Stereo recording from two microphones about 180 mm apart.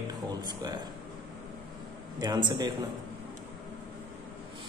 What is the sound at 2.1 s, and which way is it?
Speech, 25° right (ahead or behind).